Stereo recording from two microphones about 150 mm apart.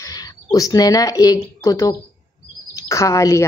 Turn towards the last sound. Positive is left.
turn(degrees=20)  # may be behind; listen again after turning